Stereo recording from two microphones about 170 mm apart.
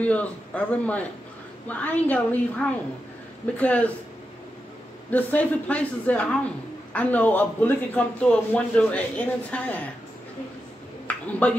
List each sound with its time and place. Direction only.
0.0 s a man's voice: 10° left (ahead or behind)
5.1 s a man's voice: 10° left (ahead or behind)
11.1 s a sound: 10° left (ahead or behind)